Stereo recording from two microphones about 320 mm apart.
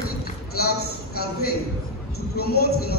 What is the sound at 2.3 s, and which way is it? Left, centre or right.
Speech, left.